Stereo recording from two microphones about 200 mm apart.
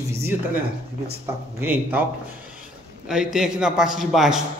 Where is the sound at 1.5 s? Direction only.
10° right (ahead or behind).